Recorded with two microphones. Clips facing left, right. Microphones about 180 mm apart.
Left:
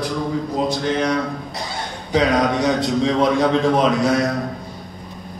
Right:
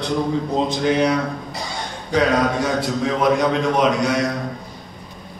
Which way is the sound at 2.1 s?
20° left (ahead or behind).